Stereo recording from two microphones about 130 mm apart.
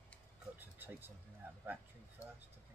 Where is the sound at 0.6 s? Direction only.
15° right (ahead or behind).